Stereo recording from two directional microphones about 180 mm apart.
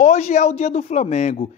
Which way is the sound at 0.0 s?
40° left (ahead or behind).